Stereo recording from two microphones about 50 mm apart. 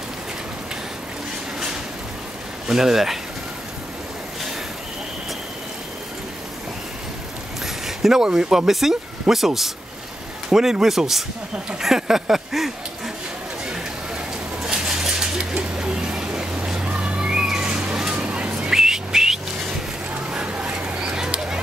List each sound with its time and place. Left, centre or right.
2.7 s speech: centre
7.6 s speech: centre
14.6 s a sound: centre
15.5 s vehicle: right
16.5 s cat: centre
17.6 s a sound: centre
18.1 s vehicle: right
18.8 s whistling: centre
20.2 s duck: right